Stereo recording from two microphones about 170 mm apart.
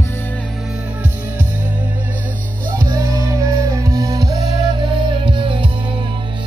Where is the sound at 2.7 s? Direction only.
15° right (ahead or behind).